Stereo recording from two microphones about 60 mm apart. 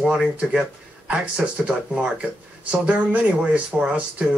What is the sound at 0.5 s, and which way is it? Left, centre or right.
Speech, centre.